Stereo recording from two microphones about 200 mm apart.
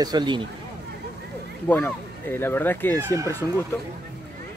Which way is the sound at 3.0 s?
15° right (ahead or behind).